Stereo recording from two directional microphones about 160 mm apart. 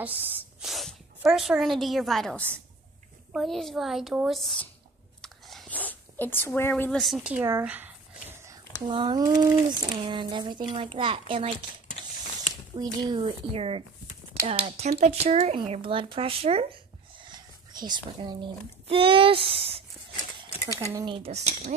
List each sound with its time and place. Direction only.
0.0 s a woman's voice: 10° right (ahead or behind)
5.2 s a sound: centre (ahead or behind)
7.3 s a sound: 15° right (ahead or behind)
8.8 s speech: 30° right (ahead or behind)
12.7 s a child's voice: 30° right (ahead or behind)
20.9 s speech: 25° right (ahead or behind)
21.2 s speech: 40° right (ahead or behind)